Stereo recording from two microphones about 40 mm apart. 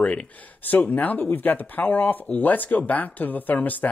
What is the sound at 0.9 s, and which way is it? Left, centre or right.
Speech, left.